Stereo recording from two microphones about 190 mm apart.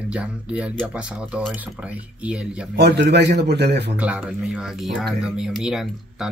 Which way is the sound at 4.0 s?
5° right (ahead or behind).